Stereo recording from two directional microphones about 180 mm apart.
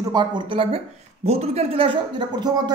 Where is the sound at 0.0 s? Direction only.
25° right (ahead or behind).